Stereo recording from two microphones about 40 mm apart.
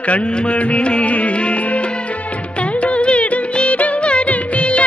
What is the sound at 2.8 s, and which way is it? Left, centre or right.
Music of bollywood, left.